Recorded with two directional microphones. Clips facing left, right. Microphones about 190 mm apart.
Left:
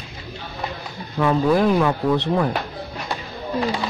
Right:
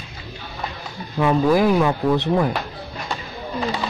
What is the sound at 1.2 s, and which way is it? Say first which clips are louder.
Speech: right 1 dB; 10° right (ahead or behind).